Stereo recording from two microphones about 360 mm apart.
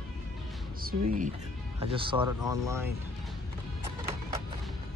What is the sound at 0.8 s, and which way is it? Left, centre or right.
Speech, right.